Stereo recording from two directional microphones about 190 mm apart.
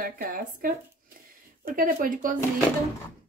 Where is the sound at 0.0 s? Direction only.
50° right (ahead or behind).